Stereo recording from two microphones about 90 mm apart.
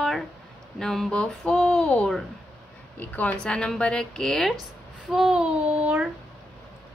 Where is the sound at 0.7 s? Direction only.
5° left (ahead or behind).